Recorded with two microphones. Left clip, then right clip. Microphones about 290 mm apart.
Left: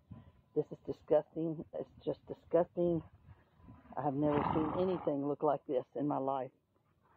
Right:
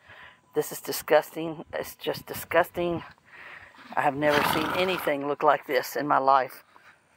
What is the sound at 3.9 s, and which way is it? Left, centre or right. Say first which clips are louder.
Speech: right 11 dB; centre.